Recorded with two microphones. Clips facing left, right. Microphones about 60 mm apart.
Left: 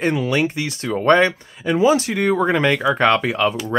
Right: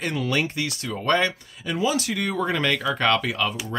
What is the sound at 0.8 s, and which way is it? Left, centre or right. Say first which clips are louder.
Speech: left 8 dB; left.